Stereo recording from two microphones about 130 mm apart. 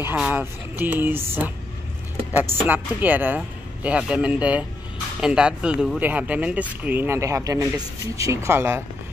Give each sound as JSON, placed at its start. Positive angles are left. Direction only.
{"t": 0.0, "sound": "speech", "side_deg": -15}
{"t": 2.6, "sound": "speech", "side_deg": -15}